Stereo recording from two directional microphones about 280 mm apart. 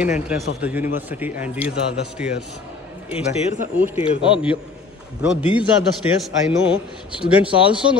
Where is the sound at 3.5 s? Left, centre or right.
Right.